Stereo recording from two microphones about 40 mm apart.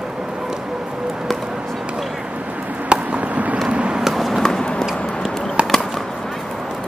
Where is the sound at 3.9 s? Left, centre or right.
Centre.